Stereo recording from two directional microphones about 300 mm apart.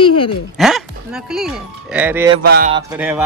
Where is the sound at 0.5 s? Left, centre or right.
Centre.